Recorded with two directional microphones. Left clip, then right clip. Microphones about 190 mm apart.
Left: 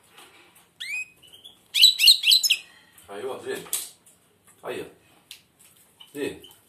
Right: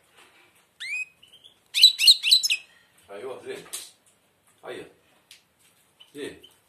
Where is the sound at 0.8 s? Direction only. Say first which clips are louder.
Even; 30° right (ahead or behind).